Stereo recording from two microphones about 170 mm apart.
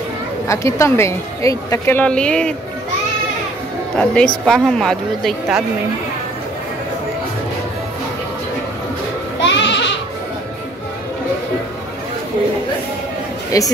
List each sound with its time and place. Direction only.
0.5 s a woman's voice: 15° left (ahead or behind)
3.9 s speech: 5° left (ahead or behind)
9.4 s goat: 90° left
13.5 s speech: 20° left (ahead or behind)